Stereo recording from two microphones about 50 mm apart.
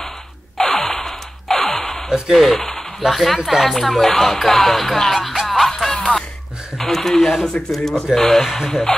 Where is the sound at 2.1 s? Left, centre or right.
Centre.